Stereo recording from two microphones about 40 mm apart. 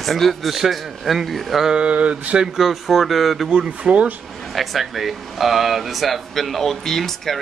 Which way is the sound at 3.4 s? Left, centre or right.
Right.